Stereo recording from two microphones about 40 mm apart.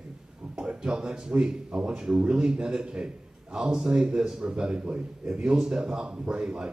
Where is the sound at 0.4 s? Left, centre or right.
Right.